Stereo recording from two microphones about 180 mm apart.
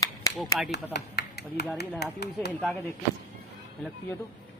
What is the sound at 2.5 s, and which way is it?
Speech, 5° left (ahead or behind).